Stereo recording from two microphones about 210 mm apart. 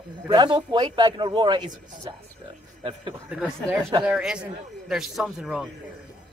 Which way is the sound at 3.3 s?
5° right (ahead or behind).